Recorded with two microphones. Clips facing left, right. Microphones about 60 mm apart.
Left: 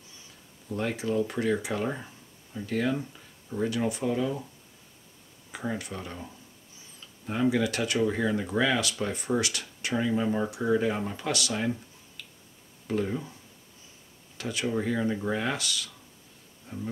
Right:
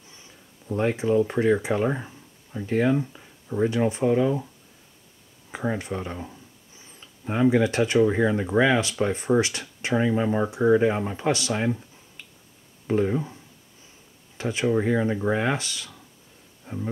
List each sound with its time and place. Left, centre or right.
0.7 s speech: right
5.5 s speech: right
12.8 s speech: right
16.6 s a sound: right